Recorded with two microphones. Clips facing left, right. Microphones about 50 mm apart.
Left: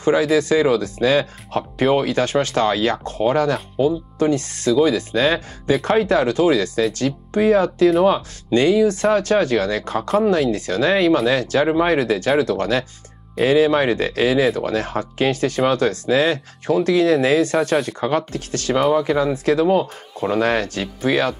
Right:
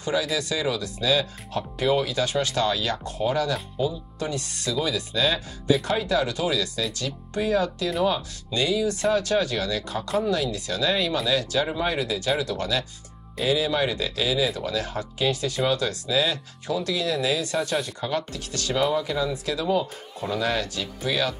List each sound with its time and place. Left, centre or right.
0.0 s speech: left